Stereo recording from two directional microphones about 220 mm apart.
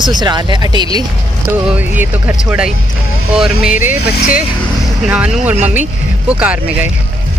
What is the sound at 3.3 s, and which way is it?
Speech, 5° right (ahead or behind).